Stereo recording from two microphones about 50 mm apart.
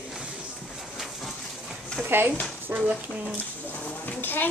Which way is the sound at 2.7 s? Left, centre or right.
Right.